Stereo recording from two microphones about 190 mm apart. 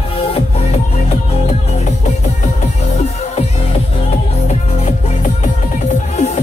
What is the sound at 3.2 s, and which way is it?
Music, 30° left (ahead or behind).